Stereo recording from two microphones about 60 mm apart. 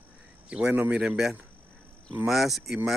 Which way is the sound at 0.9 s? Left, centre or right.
Centre.